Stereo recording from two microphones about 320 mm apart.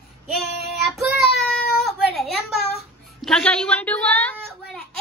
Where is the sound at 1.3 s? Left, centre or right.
Centre.